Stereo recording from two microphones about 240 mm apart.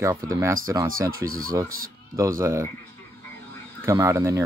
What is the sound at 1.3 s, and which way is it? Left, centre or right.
Speech, right.